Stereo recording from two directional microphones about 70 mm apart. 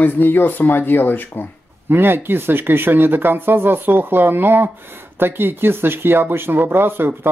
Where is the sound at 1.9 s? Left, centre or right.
Right.